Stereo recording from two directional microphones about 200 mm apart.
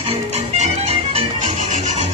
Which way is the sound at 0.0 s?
30° right (ahead or behind).